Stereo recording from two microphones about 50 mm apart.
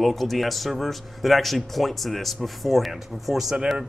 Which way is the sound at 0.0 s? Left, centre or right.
Centre.